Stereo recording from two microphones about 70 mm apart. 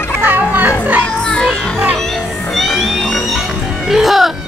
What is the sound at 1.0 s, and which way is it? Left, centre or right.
Music, centre.